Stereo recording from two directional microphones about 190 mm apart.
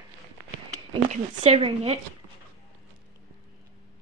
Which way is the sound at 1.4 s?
30° right (ahead or behind).